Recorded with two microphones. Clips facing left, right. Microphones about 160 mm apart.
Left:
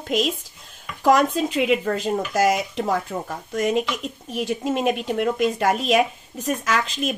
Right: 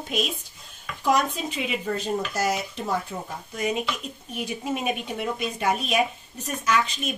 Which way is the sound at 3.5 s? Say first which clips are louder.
Left 6 dB; 90° left.